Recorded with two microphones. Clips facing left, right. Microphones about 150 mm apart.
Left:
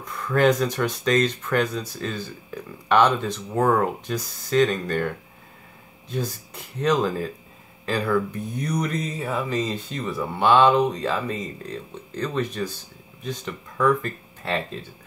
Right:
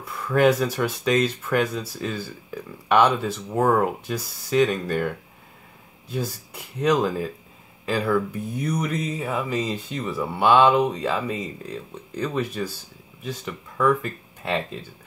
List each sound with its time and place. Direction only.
0.0 s speech: 10° right (ahead or behind)